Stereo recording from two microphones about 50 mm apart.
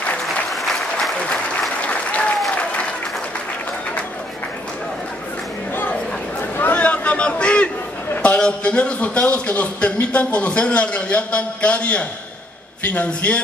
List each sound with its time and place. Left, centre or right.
0.5 s applause: centre
1.8 s applause: left
6.7 s a sound: left
8.2 s a man's voice: left